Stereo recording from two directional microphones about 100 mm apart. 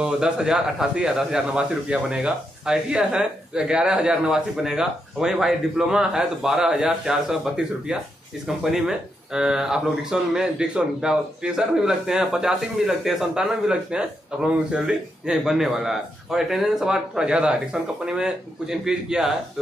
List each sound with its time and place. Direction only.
0.0 s a man's voice: 5° right (ahead or behind)